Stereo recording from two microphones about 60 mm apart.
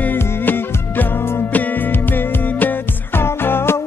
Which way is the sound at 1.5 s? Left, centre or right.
Left.